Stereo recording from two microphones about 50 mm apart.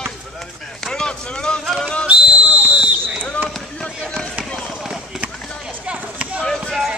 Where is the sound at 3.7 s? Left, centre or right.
Centre.